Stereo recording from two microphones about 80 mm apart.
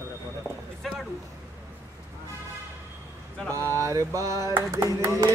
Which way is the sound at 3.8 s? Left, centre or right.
Right.